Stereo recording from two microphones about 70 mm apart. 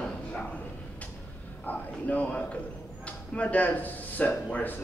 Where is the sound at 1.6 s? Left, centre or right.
Left.